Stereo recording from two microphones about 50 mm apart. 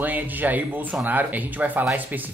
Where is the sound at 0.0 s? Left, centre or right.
Right.